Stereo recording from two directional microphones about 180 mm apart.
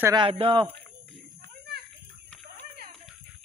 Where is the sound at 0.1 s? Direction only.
30° right (ahead or behind).